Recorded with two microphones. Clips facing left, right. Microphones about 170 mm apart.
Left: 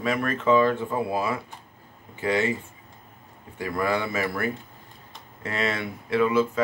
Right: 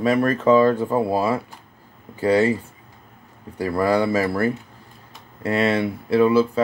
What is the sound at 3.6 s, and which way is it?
Speech, 35° right (ahead or behind).